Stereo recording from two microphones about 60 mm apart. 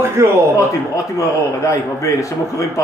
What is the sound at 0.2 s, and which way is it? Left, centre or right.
Speech, right.